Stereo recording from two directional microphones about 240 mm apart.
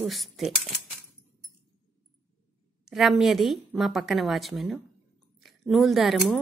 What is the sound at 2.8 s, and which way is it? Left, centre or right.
Speech, centre.